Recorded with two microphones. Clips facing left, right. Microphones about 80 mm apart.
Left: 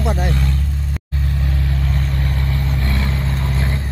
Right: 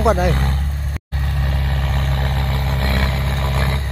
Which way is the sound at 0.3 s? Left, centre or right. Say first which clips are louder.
Right 1 dB; right.